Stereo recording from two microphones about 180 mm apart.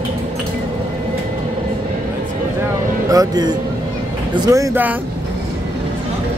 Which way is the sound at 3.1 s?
20° right (ahead or behind).